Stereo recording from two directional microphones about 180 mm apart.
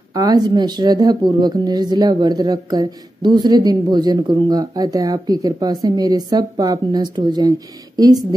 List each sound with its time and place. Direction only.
0.1 s speech: 20° right (ahead or behind)